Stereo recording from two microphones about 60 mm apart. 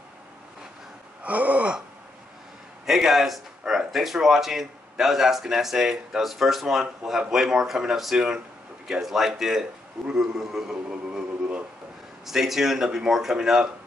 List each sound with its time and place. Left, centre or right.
1.2 s gasp: right
2.9 s a man's voice: centre